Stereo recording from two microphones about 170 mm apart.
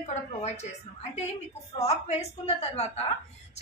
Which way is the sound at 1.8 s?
40° left (ahead or behind).